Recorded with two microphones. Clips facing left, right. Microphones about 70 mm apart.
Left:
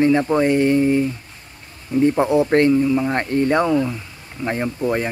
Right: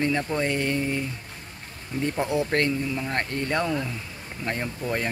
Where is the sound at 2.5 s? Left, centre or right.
Left.